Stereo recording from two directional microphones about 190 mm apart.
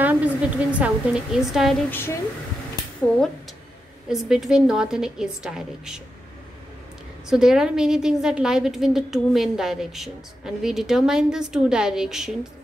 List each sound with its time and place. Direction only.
0.0 s a woman's voice: 10° right (ahead or behind)
1.9 s speech: 10° left (ahead or behind)
4.1 s a woman's voice: centre (ahead or behind)
7.2 s a woman's voice: centre (ahead or behind)